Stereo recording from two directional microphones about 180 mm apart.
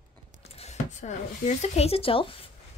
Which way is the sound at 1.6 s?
35° left (ahead or behind).